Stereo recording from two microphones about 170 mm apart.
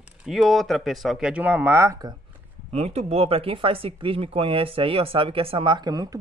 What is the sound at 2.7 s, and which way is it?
Speech, 40° right (ahead or behind).